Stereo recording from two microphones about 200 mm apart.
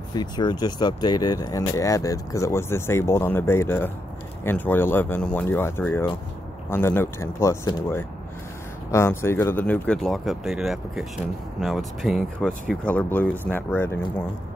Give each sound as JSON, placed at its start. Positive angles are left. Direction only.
{"t": 0.1, "sound": "speech", "side_deg": 20}